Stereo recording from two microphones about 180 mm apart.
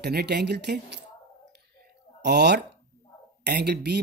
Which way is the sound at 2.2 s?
70° right (ahead or behind).